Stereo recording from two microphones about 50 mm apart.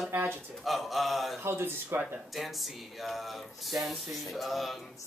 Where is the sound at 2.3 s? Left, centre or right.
Centre.